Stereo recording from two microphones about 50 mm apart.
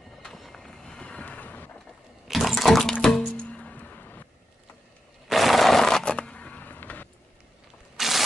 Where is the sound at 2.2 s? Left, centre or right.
Centre.